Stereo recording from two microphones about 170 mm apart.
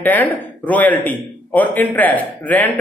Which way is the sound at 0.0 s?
10° left (ahead or behind).